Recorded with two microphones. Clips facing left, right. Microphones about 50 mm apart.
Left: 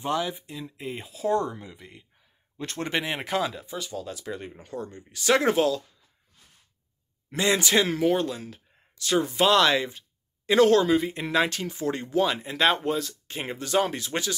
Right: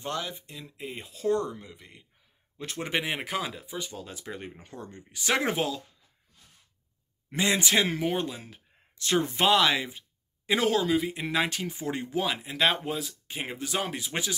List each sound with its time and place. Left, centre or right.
0.0 s speech: centre
2.6 s speech: centre
7.2 s speech: centre
8.9 s speech: right
9.5 s speech: centre